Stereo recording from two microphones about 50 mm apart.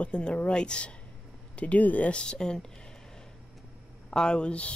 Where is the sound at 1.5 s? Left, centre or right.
Left.